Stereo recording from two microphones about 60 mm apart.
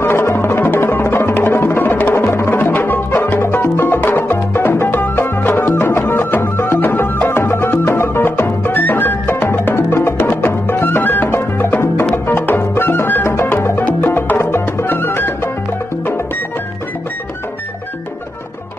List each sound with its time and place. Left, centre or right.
0.0 s music: left